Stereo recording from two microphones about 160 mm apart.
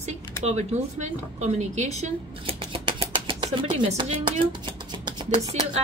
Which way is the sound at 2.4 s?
35° right (ahead or behind).